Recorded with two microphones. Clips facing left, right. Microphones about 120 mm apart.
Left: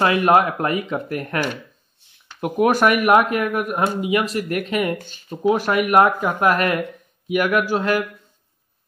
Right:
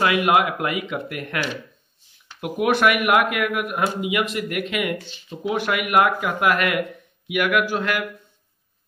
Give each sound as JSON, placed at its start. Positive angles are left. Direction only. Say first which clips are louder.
{"t": 0.0, "sound": "speech", "louder": "left 3 dB", "side_deg": 35}
{"t": 2.4, "sound": "speech", "louder": "left 2 dB", "side_deg": 40}